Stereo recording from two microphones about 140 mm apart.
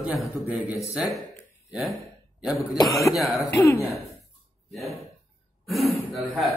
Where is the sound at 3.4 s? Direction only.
20° left (ahead or behind).